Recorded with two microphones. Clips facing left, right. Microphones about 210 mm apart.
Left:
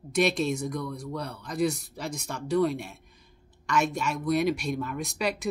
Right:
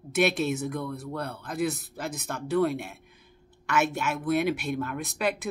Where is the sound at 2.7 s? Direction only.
55° right (ahead or behind).